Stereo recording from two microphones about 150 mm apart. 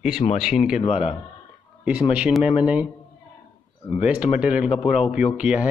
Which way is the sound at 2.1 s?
5° right (ahead or behind).